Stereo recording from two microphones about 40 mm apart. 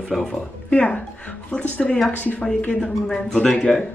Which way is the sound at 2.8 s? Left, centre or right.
Centre.